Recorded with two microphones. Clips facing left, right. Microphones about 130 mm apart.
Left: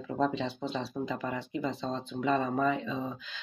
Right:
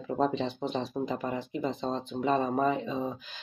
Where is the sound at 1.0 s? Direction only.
35° right (ahead or behind).